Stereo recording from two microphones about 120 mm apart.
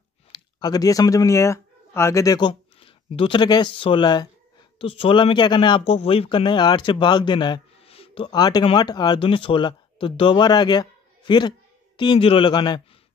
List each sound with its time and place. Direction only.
0.3 s speech: 35° left (ahead or behind)
2.8 s speech: 50° left (ahead or behind)
5.9 s speech: 55° left (ahead or behind); by 7.6 s 40° left (ahead or behind)
7.8 s a sound: 55° left (ahead or behind); by 8.6 s 35° left (ahead or behind)
8.7 s speech: 35° left (ahead or behind)
9.2 s speech: 45° left (ahead or behind)